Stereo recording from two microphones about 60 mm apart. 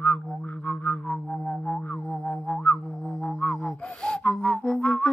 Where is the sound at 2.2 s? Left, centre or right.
Left.